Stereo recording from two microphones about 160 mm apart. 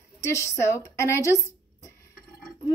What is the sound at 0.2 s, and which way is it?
A child's voice, 20° left (ahead or behind).